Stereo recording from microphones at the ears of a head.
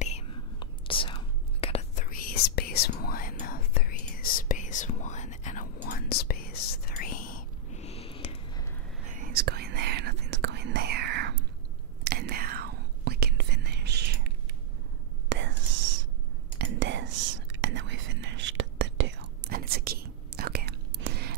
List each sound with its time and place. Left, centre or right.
0.8 s whispering: left
9.0 s whispering: right